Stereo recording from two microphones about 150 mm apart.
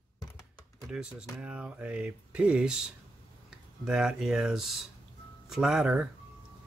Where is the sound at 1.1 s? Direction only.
5° right (ahead or behind).